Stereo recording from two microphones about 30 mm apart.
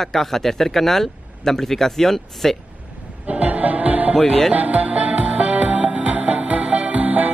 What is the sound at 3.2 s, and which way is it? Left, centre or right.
Speech, right.